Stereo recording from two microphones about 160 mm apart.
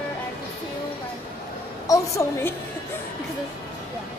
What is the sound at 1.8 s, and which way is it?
Speech, 20° left (ahead or behind).